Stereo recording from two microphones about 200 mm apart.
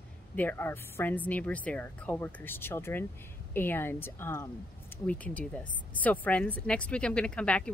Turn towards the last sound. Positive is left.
turn(degrees=5)  # may be behind; listen again after turning